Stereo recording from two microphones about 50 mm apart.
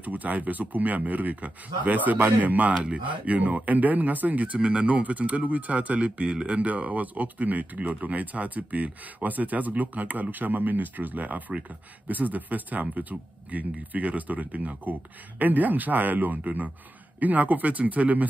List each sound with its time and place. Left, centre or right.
0.0 s speech: right